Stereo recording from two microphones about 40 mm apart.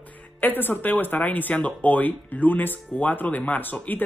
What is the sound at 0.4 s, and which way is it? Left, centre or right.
Speech, left.